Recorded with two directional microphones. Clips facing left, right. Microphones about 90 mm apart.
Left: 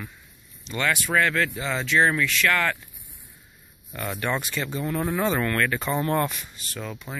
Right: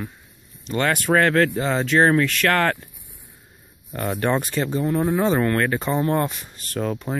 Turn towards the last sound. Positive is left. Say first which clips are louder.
# right 9 dB
turn(degrees=-45)  # may be behind; listen again after turning